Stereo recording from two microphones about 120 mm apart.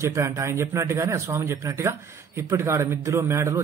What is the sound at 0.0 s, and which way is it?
A man's voice, 25° right (ahead or behind).